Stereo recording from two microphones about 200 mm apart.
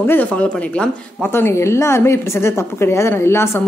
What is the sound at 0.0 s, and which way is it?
Speech, 10° left (ahead or behind).